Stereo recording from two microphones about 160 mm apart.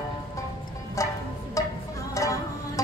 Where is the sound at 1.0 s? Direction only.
20° left (ahead or behind).